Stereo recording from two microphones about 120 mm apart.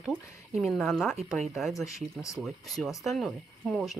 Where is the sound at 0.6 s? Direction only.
Centre (ahead or behind).